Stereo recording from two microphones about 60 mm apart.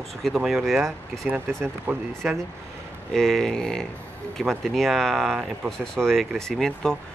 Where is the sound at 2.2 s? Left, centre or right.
Centre.